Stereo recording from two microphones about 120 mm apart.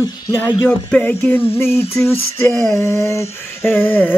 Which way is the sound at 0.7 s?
10° left (ahead or behind).